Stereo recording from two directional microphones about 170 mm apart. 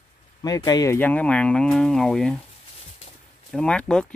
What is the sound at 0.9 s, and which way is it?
Speech, 10° left (ahead or behind).